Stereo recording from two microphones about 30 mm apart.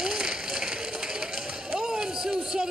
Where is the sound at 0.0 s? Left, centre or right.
Right.